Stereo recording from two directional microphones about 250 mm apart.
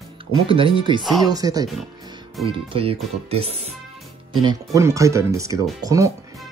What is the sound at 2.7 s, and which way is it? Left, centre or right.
Speech, right.